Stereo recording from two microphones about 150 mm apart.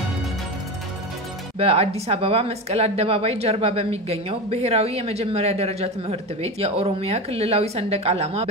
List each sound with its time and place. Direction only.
1.6 s speech: 40° right (ahead or behind)